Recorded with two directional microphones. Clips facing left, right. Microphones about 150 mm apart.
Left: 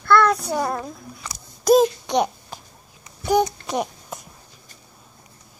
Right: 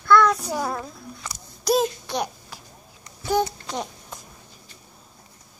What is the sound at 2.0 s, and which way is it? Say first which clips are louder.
Babbling: left 7 dB; 20° left (ahead or behind).